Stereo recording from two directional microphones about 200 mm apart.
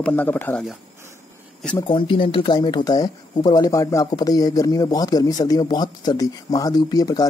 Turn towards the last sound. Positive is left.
turn(degrees=20)  # may be behind; listen again after turning